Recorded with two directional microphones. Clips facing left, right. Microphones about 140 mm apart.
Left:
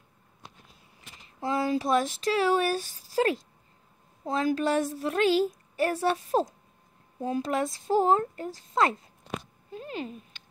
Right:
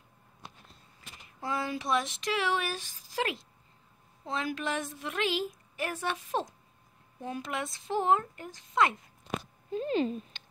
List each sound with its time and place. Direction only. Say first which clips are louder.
1.4 s a woman's voice: left 7 dB; 35° left (ahead or behind)
9.7 s speech: right 7 dB; 25° right (ahead or behind)